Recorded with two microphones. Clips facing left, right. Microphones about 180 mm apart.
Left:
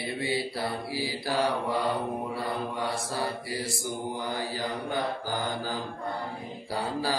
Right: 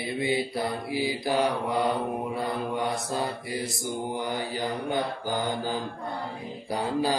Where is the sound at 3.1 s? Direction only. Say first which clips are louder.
Right 2 dB; 20° right (ahead or behind).